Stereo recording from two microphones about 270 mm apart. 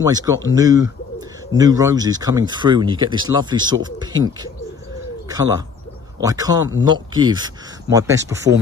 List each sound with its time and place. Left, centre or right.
0.0 s speech: centre
6.2 s speech: centre